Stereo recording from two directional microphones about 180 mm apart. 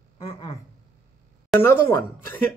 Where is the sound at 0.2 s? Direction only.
30° left (ahead or behind).